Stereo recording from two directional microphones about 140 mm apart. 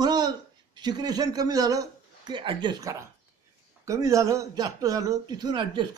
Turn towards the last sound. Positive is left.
turn(degrees=-35)  # may be behind; listen again after turning